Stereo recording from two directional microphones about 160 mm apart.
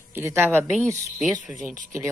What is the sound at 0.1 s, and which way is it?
Speech, 15° right (ahead or behind).